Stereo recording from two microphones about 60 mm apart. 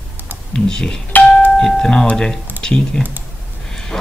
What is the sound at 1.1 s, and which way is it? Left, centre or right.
Doorbell, left.